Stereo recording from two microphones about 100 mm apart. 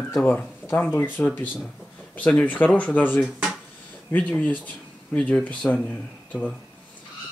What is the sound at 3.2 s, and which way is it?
Speech, 5° right (ahead or behind).